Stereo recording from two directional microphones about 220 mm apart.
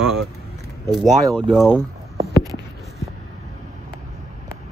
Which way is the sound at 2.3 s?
15° right (ahead or behind).